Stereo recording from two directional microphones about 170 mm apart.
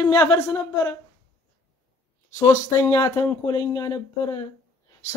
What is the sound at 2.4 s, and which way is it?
Speech, 15° left (ahead or behind).